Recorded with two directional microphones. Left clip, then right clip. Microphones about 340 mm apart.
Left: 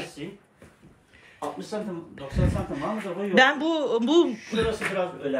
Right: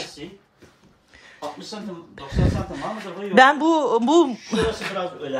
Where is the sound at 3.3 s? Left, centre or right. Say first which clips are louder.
Right 6 dB; centre.